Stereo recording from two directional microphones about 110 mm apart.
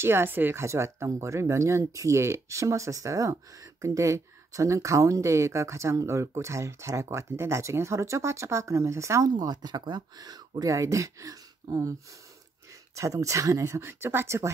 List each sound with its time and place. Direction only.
0.0 s speech: 20° right (ahead or behind)
9.3 s speech: 40° right (ahead or behind)
12.9 s speech: 30° right (ahead or behind)